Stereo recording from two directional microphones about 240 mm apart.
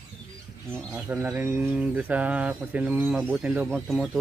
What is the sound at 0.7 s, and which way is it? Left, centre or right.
Speech, centre.